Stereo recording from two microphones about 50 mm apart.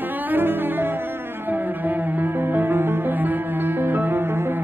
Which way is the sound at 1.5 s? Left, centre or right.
Right.